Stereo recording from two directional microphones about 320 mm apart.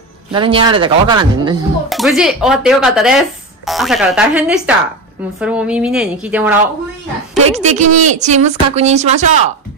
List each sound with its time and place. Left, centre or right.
0.3 s speech: centre
1.9 s speech: centre
7.4 s speech: right